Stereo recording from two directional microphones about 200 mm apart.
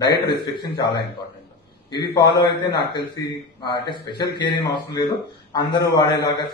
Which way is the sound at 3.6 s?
20° left (ahead or behind).